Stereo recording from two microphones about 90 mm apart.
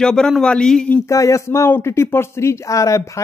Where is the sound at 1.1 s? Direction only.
35° left (ahead or behind).